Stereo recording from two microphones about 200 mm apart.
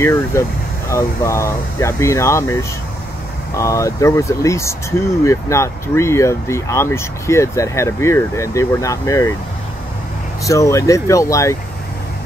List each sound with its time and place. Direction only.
0.0 s speech: 15° left (ahead or behind)
10.4 s speech: 15° left (ahead or behind)